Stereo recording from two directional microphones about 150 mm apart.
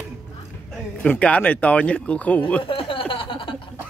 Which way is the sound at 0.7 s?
10° left (ahead or behind).